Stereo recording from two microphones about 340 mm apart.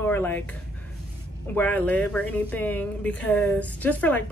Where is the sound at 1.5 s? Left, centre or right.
Centre.